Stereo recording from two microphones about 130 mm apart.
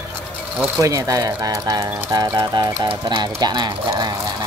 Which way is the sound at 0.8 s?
25° right (ahead or behind).